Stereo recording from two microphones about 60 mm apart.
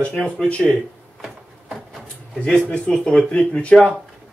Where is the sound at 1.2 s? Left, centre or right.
Centre.